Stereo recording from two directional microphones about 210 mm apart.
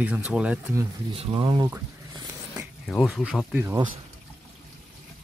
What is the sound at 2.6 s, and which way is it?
Speech, centre (ahead or behind).